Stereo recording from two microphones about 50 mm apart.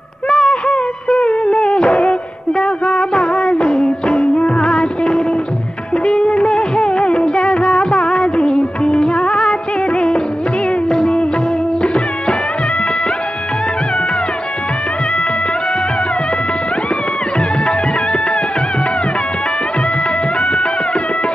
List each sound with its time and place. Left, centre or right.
0.3 s music: centre